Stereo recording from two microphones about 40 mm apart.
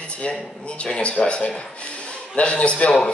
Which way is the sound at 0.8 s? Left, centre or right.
Left.